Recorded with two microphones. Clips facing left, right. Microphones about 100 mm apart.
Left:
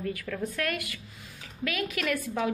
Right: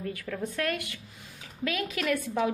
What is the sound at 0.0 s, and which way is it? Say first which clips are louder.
A woman's voice: left 1 dB; 30° right (ahead or behind).